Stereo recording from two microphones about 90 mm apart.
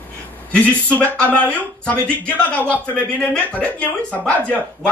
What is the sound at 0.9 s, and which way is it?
Speech, 15° left (ahead or behind).